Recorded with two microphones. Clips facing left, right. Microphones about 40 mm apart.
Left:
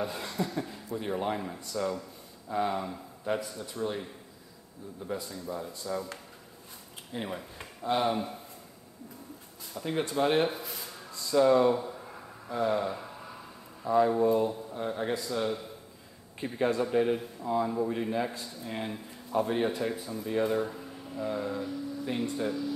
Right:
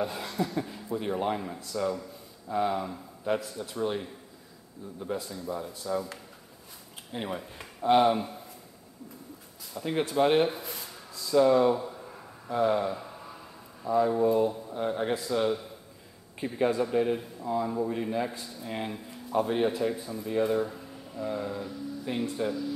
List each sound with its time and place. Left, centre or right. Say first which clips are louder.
0.0 s speech: right 2 dB; centre
4.8 s speech: right 2 dB; right
5.1 s speech: right 2 dB; centre
7.2 s speech: right 2 dB; centre
9.8 s speech: right 3 dB; centre
12.4 s speech: right 3 dB; centre
14.8 s speech: right 3 dB; centre